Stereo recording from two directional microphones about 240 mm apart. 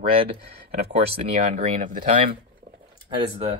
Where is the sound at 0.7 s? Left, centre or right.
Right.